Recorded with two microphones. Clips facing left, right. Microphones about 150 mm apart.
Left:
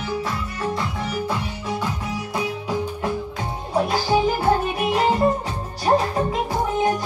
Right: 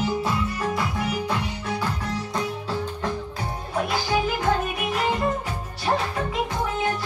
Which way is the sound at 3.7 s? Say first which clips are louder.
Left 5 dB; 35° left (ahead or behind).